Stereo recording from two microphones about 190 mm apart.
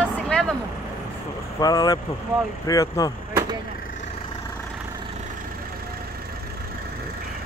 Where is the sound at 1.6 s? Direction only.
20° left (ahead or behind).